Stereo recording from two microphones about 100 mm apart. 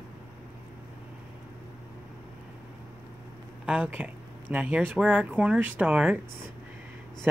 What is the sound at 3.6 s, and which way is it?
Speech, 15° right (ahead or behind).